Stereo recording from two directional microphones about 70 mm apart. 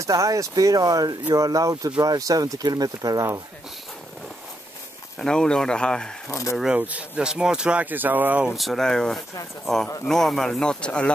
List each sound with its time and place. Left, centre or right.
0.0 s speech: right
5.2 s speech: centre
6.7 s speech: centre
7.8 s speech: right
8.5 s speech: centre